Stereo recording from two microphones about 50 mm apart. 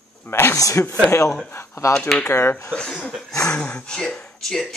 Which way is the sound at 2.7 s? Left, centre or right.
Centre.